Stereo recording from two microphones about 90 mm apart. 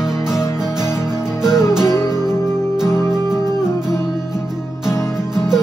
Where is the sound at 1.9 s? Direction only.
35° left (ahead or behind).